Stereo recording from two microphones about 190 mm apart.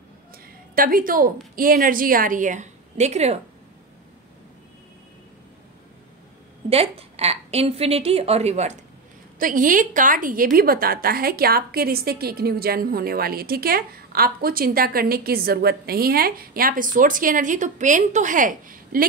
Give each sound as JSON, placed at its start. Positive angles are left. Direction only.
{"t": 0.7, "sound": "a woman's voice", "side_deg": -45}
{"t": 6.7, "sound": "a woman's voice", "side_deg": -30}
{"t": 9.4, "sound": "a woman's voice", "side_deg": -45}